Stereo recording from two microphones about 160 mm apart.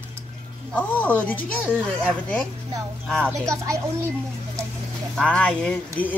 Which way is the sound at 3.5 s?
15° right (ahead or behind).